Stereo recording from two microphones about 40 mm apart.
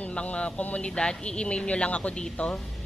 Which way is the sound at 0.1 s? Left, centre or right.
Left.